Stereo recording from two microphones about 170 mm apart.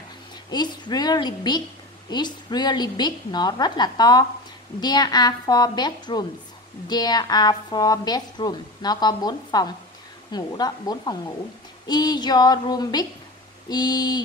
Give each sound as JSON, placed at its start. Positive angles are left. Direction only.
{"t": 0.5, "sound": "a woman's voice", "side_deg": 25}